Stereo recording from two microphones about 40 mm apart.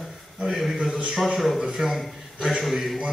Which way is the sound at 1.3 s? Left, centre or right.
Centre.